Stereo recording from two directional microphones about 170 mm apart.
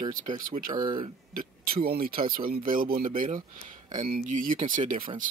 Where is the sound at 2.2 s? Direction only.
55° right (ahead or behind).